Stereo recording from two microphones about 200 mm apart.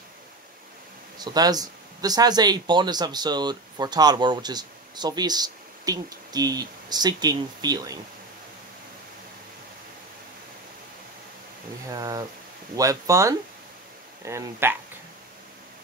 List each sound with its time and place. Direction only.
1.1 s speech: 20° right (ahead or behind)
11.9 s speech: 20° right (ahead or behind)